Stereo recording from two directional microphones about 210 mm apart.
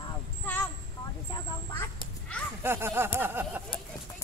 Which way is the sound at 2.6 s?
10° right (ahead or behind).